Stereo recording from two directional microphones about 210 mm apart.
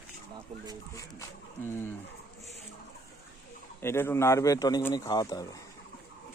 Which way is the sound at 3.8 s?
10° left (ahead or behind).